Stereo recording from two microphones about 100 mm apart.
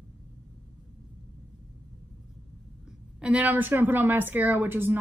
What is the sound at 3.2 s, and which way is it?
A woman's voice, 15° right (ahead or behind).